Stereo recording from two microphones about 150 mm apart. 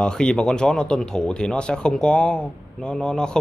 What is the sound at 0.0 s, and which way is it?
Speech, 5° left (ahead or behind).